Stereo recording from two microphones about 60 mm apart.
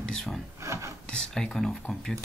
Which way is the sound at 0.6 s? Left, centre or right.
Right.